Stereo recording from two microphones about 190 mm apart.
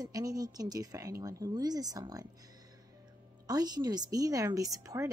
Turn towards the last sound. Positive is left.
turn(degrees=-15)  # may be behind; listen again after turning